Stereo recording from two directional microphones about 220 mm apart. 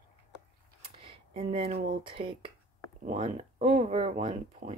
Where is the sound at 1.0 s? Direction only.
25° right (ahead or behind).